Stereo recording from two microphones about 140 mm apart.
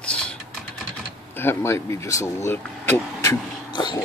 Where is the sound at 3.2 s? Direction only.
30° left (ahead or behind).